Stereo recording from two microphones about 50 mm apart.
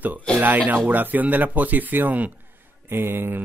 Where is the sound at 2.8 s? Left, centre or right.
Right.